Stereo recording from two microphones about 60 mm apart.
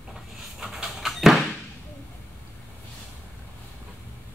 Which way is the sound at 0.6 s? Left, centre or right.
Centre.